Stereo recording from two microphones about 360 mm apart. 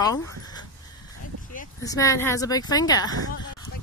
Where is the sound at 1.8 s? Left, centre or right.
Centre.